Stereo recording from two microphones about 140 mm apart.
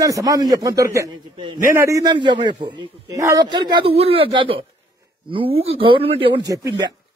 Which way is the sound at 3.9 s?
45° right (ahead or behind).